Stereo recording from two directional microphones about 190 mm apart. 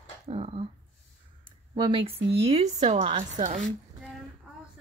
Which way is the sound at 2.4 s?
35° right (ahead or behind).